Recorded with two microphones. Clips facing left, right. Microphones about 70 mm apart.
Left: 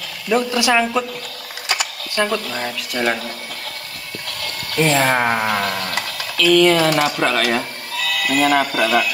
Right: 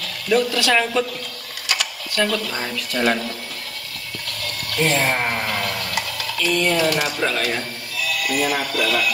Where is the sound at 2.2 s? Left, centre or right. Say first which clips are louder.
Left 2 dB; centre.